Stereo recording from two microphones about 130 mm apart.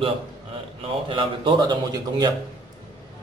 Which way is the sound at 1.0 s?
40° right (ahead or behind).